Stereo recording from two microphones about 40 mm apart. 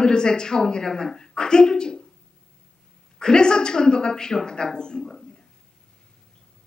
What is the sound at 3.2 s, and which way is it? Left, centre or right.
Speech, centre.